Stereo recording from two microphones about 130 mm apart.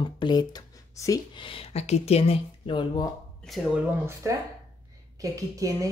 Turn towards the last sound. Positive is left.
turn(degrees=-25)  # may be behind; listen again after turning